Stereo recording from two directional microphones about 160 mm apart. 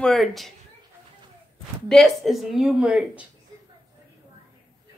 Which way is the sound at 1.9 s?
Centre (ahead or behind).